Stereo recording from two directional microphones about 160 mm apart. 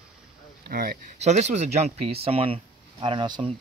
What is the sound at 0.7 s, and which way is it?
Speech, 65° right (ahead or behind).